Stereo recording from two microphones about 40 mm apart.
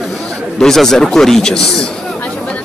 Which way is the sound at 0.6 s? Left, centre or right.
Centre.